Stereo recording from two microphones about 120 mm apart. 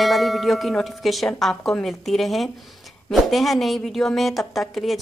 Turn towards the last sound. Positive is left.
turn(degrees=0)  # may be behind; listen again after turning